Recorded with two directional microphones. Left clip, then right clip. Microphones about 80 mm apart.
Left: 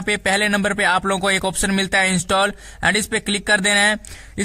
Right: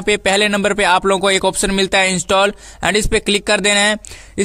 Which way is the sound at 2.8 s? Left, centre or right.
Right.